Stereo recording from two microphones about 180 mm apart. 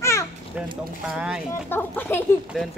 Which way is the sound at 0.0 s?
15° left (ahead or behind).